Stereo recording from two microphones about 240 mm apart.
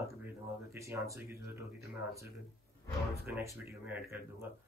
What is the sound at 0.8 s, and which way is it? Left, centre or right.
Speech, centre.